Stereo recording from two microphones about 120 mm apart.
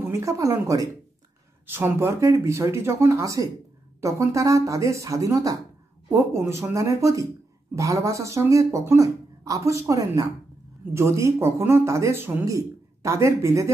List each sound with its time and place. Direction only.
0.0 s speech: 25° right (ahead or behind)